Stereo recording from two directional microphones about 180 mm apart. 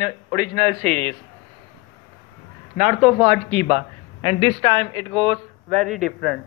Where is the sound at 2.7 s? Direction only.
40° right (ahead or behind).